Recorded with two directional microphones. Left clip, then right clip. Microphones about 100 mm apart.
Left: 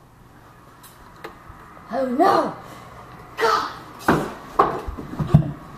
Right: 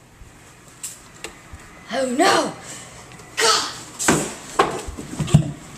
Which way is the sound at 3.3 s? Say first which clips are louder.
Right 1 dB; 30° right (ahead or behind).